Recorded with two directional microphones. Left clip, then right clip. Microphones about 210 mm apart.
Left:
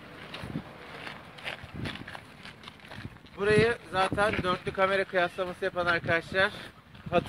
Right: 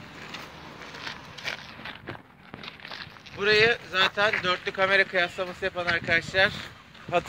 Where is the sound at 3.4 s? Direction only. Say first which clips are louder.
Right 4 dB; 50° left (ahead or behind).